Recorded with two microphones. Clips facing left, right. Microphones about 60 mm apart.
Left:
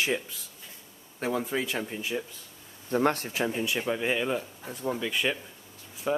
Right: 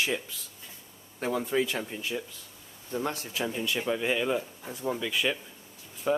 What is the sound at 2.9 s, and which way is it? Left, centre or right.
Speech, left.